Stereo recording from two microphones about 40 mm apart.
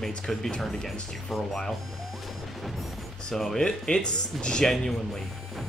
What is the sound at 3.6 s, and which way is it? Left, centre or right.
Speech, left.